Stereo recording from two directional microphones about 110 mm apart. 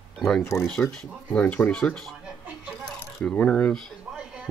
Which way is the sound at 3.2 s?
10° left (ahead or behind).